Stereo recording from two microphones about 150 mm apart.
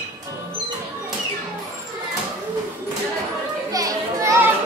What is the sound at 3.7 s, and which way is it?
Children playing, 25° right (ahead or behind).